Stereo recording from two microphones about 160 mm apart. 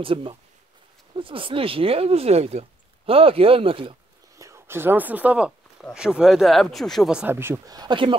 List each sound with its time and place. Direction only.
0.0 s speech: 35° right (ahead or behind)
4.4 s a sound: 15° right (ahead or behind)
5.9 s speech: 5° right (ahead or behind); by 8.2 s 30° right (ahead or behind)